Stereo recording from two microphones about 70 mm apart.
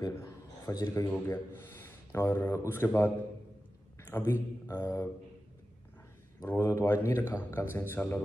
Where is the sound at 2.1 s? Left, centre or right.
Left.